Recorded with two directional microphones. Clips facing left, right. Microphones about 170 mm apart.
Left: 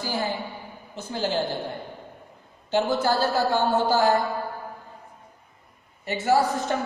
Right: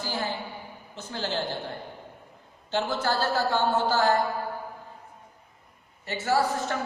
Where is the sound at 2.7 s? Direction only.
10° left (ahead or behind).